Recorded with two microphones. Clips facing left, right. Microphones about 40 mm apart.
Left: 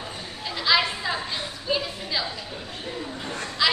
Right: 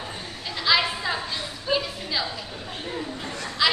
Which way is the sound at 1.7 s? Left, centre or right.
Centre.